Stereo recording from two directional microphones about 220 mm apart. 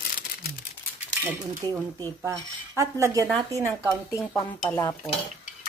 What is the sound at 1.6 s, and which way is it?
Speech, 20° right (ahead or behind).